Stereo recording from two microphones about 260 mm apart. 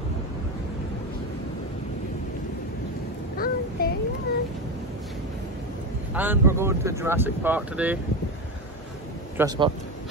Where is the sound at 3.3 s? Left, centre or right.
Left.